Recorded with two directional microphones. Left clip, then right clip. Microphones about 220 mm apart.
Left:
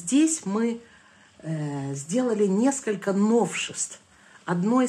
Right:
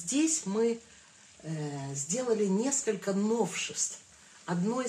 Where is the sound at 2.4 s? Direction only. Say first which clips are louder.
Left 7 dB; 40° left (ahead or behind).